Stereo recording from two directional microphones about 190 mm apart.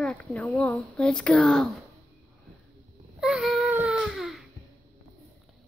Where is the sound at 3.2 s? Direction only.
5° right (ahead or behind).